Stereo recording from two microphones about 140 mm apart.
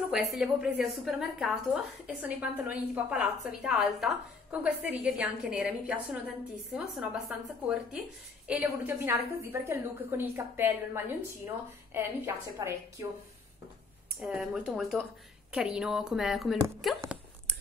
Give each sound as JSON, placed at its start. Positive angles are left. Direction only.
{"t": 0.1, "sound": "a woman's voice", "side_deg": 0}
{"t": 14.2, "sound": "speech", "side_deg": -5}